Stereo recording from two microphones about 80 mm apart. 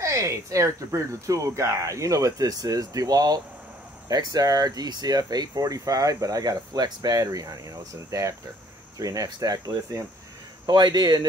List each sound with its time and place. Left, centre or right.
0.0 s speech: right
10.7 s speech: right